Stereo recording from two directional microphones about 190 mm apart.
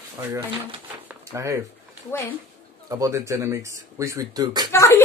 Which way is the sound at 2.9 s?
15° right (ahead or behind).